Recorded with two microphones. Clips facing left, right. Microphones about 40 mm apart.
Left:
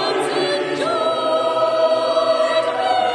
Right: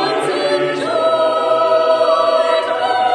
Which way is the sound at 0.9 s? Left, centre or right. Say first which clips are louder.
Right 5 dB; right.